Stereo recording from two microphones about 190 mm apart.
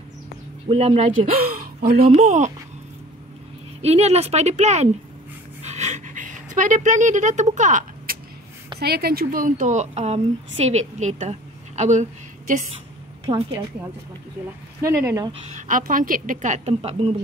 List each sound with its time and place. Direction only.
0.7 s a woman's voice: 30° right (ahead or behind)
1.3 s speech: 55° right (ahead or behind)
2.1 s a woman's voice: 40° right (ahead or behind)
3.8 s a woman's voice: 35° right (ahead or behind)
5.6 s a sound: 35° right (ahead or behind)
8.7 s a woman's voice: 55° right (ahead or behind); by 12.6 s 40° right (ahead or behind)
14.8 s speech: 15° right (ahead or behind)
15.4 s a woman's voice: 40° right (ahead or behind)